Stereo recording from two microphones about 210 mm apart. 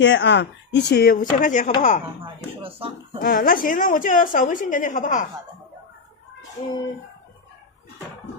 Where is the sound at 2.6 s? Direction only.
25° right (ahead or behind).